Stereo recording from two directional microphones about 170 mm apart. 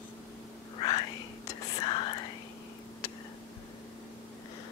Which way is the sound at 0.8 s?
30° left (ahead or behind).